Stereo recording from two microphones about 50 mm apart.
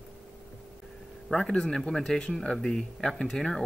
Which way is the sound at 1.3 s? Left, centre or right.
Centre.